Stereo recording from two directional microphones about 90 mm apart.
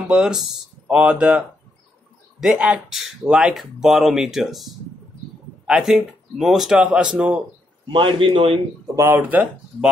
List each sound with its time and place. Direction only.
0.1 s speech: 5° right (ahead or behind)
2.4 s speech: 10° right (ahead or behind)
7.9 s a man's voice: 70° right (ahead or behind)
8.9 s speech: 30° right (ahead or behind)